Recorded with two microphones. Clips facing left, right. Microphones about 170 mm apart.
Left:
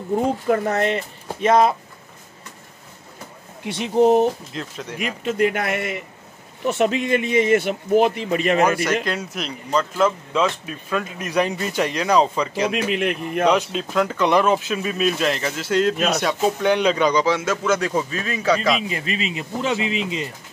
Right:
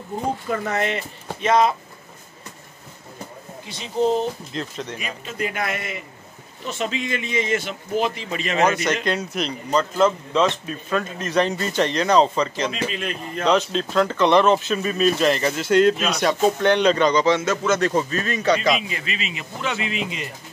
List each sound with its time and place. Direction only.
0.7 s speech: 45° left (ahead or behind)
3.6 s speech: 65° left (ahead or behind)
4.6 s speech: 5° left (ahead or behind)
4.9 s speech: 75° left (ahead or behind); by 8.5 s 55° left (ahead or behind)
9.0 s speech: centre (ahead or behind)
12.9 s speech: 70° left (ahead or behind)
13.5 s speech: 10° left (ahead or behind)
18.8 s speech: 40° left (ahead or behind)